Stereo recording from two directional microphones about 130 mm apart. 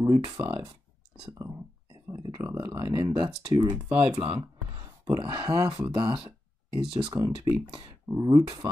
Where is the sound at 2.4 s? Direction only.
20° right (ahead or behind).